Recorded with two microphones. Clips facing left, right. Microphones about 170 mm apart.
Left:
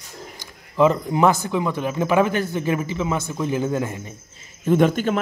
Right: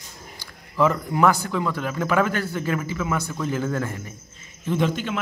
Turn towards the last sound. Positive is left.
turn(degrees=45)  # may be behind; listen again after turning